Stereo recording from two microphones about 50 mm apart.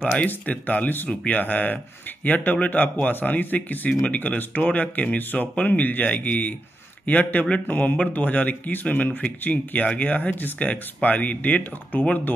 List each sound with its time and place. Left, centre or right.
0.3 s speech: left